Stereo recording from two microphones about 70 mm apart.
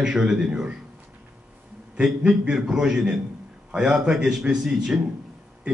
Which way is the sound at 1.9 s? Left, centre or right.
Centre.